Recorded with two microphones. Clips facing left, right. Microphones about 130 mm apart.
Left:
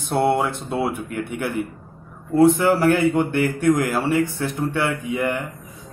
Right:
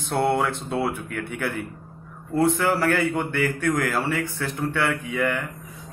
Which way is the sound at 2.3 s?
20° left (ahead or behind).